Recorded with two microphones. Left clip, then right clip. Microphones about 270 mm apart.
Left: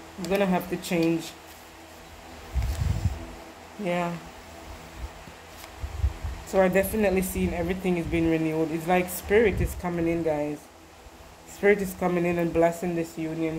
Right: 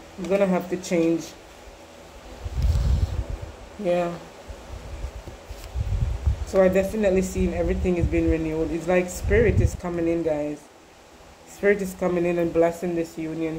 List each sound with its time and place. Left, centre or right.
0.2 s a woman's voice: left
6.5 s a woman's voice: left
11.6 s a woman's voice: left